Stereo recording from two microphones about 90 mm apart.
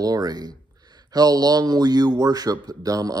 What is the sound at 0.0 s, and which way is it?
Speech, 45° right (ahead or behind).